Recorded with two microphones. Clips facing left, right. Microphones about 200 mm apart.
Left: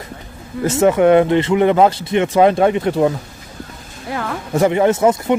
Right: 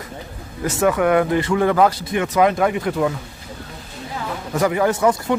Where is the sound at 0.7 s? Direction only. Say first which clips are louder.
Left 5 dB; 25° left (ahead or behind).